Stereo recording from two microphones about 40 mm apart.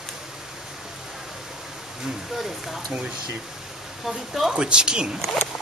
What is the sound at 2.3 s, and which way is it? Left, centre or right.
Speech, centre.